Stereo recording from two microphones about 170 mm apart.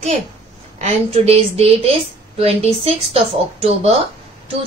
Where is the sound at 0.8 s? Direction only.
40° right (ahead or behind).